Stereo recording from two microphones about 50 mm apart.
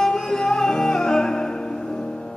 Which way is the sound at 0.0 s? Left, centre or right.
Centre.